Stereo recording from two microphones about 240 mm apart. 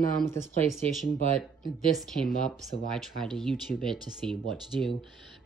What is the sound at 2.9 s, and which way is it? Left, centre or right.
Speech, centre.